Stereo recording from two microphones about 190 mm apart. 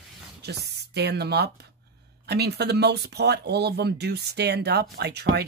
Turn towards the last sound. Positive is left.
turn(degrees=-60)  # may be behind; listen again after turning